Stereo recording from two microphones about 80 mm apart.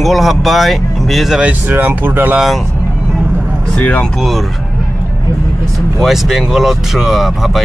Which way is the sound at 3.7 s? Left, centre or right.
Centre.